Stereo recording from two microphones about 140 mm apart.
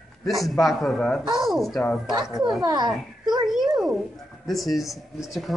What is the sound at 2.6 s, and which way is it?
Speech, 30° right (ahead or behind).